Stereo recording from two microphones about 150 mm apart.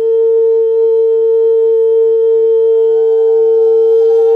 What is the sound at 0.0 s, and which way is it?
Sine wave, 40° right (ahead or behind).